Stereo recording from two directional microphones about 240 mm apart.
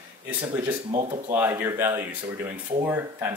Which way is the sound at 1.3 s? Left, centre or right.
Centre.